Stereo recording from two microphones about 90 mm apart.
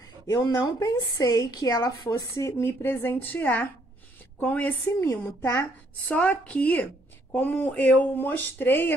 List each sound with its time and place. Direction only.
0.3 s a woman's voice: 50° left (ahead or behind)
2.6 s speech: 25° left (ahead or behind)
5.0 s speech: 35° left (ahead or behind)
5.6 s speech: 15° left (ahead or behind)